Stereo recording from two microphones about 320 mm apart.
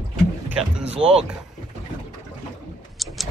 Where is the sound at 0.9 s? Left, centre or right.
Centre.